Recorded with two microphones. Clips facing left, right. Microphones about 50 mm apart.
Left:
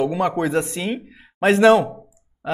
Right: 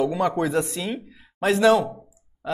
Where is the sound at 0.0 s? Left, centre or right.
Left.